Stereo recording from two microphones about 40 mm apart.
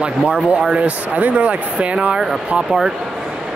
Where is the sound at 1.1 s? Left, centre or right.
Right.